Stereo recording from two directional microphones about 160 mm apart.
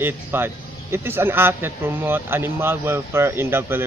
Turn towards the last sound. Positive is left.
turn(degrees=-15)  # may be behind; listen again after turning